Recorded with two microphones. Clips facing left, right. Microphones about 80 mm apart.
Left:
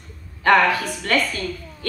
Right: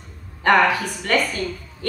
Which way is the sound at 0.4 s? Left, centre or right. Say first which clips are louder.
Even; centre.